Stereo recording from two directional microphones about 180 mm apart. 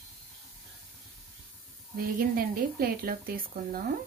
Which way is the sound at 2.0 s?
55° right (ahead or behind).